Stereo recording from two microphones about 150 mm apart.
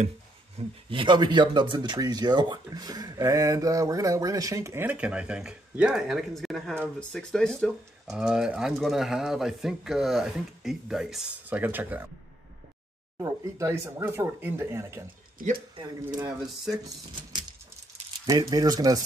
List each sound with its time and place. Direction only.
0.6 s speech: 35° right (ahead or behind); by 12.0 s 10° right (ahead or behind)
13.2 s speech: 20° right (ahead or behind)
15.3 s speech: 70° right (ahead or behind)
17.3 s a sound: 30° right (ahead or behind)
18.2 s speech: 25° right (ahead or behind)